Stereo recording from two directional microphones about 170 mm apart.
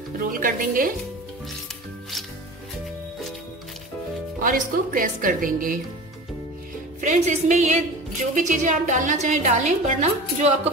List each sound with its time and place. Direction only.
0.2 s speech: 55° right (ahead or behind)
4.4 s a woman's voice: 55° right (ahead or behind)
7.0 s a woman's voice: 45° right (ahead or behind)